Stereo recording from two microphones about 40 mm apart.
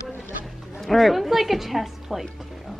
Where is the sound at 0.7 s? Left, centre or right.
Centre.